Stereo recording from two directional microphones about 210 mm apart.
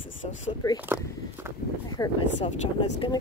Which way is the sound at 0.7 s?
10° right (ahead or behind).